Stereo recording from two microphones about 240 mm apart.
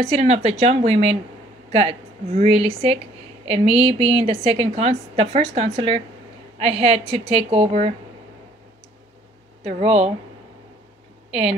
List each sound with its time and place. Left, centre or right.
0.0 s a woman's voice: right
9.6 s speech: right